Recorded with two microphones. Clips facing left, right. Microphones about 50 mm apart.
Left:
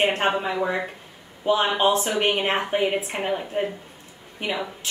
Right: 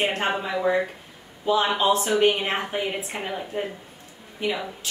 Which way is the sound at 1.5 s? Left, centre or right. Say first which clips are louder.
Left 1 dB; left.